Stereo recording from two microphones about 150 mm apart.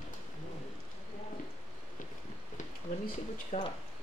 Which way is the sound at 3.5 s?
60° left (ahead or behind).